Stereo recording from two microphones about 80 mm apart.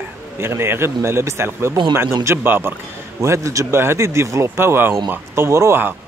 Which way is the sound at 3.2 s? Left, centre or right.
Right.